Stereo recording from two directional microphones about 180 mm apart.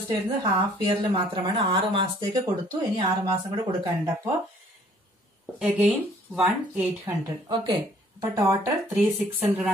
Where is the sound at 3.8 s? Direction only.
15° right (ahead or behind).